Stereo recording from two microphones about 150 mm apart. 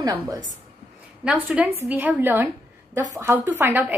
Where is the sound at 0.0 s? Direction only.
25° right (ahead or behind).